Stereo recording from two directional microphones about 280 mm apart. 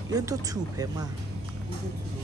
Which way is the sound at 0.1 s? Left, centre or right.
Centre.